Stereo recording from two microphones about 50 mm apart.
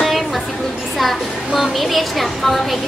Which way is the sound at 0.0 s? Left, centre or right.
Centre.